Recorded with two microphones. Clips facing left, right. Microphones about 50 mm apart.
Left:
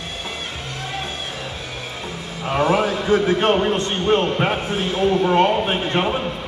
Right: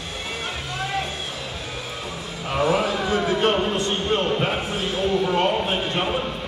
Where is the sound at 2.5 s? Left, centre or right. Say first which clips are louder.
Left 3 dB; left.